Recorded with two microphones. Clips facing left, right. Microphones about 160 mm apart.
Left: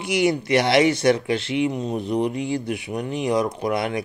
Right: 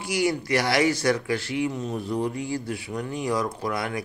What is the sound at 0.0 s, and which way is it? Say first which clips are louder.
Speech: left 4 dB; 20° left (ahead or behind).